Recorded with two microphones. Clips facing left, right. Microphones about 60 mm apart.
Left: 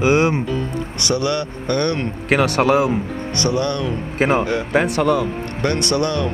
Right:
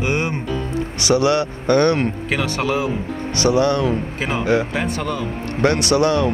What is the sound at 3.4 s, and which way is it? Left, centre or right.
Speech, centre.